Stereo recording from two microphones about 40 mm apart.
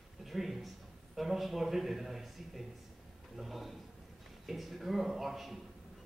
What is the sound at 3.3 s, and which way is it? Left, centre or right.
A man's voice, centre.